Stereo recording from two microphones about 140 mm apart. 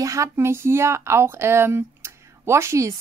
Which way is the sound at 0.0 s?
20° right (ahead or behind).